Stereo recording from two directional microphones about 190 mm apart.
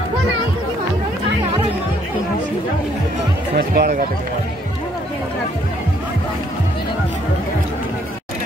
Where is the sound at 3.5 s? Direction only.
50° right (ahead or behind).